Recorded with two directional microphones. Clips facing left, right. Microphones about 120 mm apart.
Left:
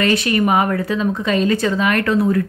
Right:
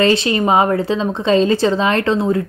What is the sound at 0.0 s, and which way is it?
A woman's voice, 25° right (ahead or behind).